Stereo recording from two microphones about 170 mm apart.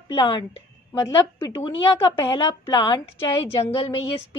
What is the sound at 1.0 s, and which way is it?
Speech, 15° left (ahead or behind).